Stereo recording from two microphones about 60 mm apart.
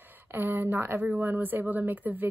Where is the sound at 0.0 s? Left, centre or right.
Right.